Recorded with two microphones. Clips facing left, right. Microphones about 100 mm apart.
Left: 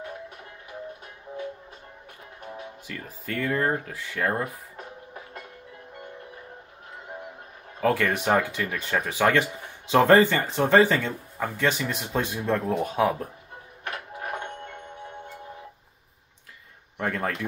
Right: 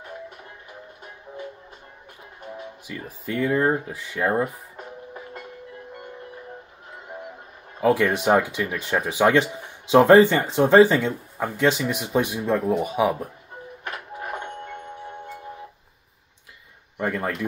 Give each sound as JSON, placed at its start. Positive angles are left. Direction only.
{"t": 2.9, "sound": "speech", "side_deg": -15}
{"t": 7.8, "sound": "speech", "side_deg": -15}
{"t": 13.8, "sound": "music", "side_deg": -5}
{"t": 16.9, "sound": "speech", "side_deg": -5}